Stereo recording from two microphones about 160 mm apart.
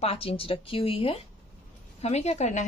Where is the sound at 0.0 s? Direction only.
35° left (ahead or behind).